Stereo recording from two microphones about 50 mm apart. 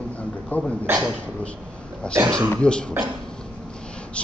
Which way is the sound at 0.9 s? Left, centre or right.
Right.